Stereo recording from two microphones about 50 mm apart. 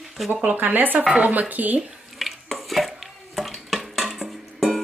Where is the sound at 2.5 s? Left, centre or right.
Centre.